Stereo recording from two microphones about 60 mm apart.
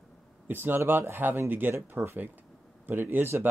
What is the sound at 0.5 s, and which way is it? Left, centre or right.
Speech, right.